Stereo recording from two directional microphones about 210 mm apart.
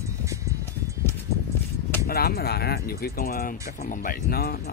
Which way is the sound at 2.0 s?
45° left (ahead or behind).